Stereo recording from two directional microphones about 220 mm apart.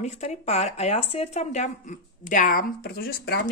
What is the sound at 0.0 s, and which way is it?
Speech, 30° left (ahead or behind).